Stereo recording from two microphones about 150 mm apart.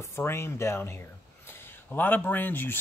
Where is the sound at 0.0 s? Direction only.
20° left (ahead or behind).